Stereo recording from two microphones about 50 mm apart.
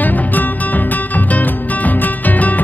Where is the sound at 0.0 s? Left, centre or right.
Left.